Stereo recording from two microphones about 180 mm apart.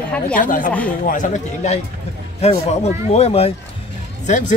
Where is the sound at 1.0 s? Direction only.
45° left (ahead or behind).